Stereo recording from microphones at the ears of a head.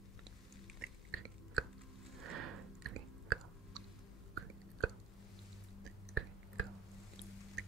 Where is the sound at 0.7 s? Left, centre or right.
Right.